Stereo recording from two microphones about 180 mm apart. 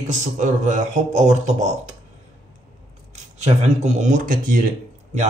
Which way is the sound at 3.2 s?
40° right (ahead or behind).